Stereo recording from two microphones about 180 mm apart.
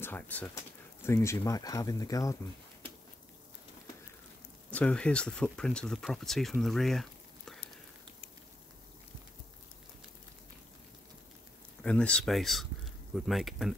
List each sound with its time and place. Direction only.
0.0 s speech: 10° left (ahead or behind)
4.6 s speech: 5° left (ahead or behind)
11.8 s speech: 5° left (ahead or behind)